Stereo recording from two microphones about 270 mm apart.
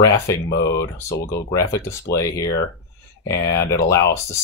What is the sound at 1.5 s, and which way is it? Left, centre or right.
Speech, centre.